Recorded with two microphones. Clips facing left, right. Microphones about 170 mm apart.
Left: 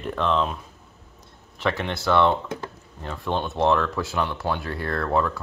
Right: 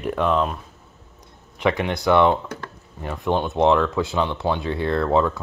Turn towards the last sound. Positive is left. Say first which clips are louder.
# right 4 dB
turn(degrees=-20)  # may be behind; listen again after turning